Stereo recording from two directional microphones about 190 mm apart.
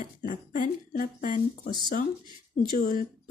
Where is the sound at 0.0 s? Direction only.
45° left (ahead or behind).